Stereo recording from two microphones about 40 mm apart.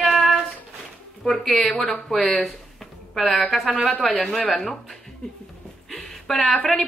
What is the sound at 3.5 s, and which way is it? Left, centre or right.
Speech, centre.